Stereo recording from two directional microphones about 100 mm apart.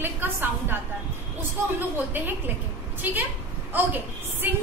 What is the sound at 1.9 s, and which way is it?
A woman's voice, 20° right (ahead or behind).